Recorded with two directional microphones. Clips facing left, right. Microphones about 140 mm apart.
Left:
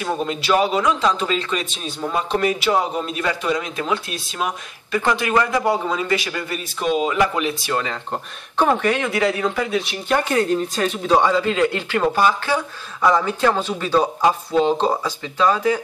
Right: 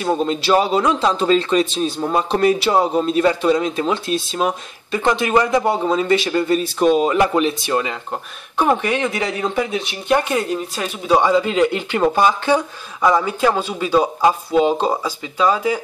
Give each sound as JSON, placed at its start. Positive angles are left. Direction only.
{"t": 0.0, "sound": "speech", "side_deg": -25}
{"t": 6.8, "sound": "speech", "side_deg": -40}
{"t": 7.6, "sound": "speech", "side_deg": -15}